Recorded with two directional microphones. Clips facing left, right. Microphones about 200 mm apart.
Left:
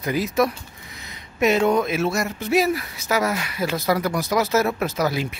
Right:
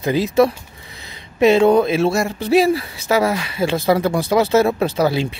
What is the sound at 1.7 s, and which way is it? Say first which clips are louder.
Speech: right 6 dB; 30° right (ahead or behind).